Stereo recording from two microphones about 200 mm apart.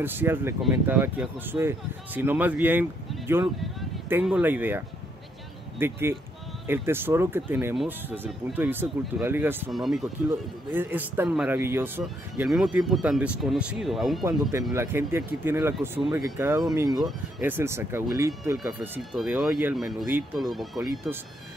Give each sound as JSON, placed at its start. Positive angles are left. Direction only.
{"t": 0.0, "sound": "speech", "side_deg": -10}
{"t": 14.7, "sound": "speech", "side_deg": -15}
{"t": 16.9, "sound": "speech", "side_deg": -5}
{"t": 18.6, "sound": "speech", "side_deg": 0}